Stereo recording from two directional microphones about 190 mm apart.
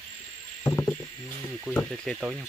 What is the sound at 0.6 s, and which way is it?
Insect, 15° left (ahead or behind).